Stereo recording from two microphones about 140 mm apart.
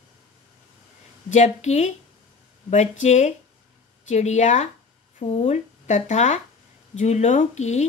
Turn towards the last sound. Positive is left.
turn(degrees=55)  # may be behind; listen again after turning